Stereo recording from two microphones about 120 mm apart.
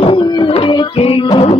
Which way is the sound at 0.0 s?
50° left (ahead or behind).